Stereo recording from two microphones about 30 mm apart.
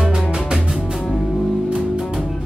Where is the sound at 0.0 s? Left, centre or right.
Right.